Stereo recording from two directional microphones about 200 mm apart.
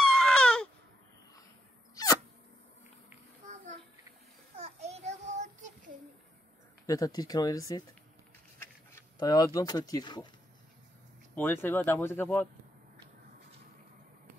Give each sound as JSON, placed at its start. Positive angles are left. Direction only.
{"t": 0.0, "sound": "baby cry", "side_deg": 5}
{"t": 4.6, "sound": "child singing", "side_deg": -30}
{"t": 6.9, "sound": "speech", "side_deg": 20}
{"t": 8.9, "sound": "speech", "side_deg": 20}
{"t": 11.3, "sound": "speech", "side_deg": 10}